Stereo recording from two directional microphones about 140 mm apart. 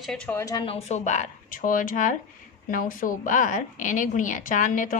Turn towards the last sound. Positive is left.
turn(degrees=70)  # may be behind; listen again after turning